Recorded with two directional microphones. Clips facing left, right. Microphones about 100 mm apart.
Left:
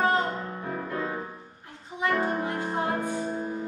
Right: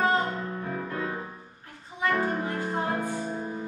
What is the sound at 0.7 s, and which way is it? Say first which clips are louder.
Music: left 3 dB; 10° left (ahead or behind).